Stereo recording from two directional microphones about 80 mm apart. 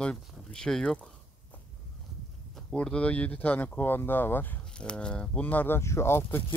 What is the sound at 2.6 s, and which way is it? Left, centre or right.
Speech, centre.